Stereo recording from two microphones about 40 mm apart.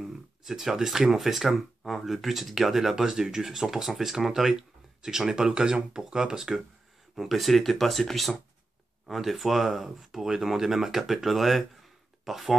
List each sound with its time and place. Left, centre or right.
0.0 s speech: centre
7.2 s speech: centre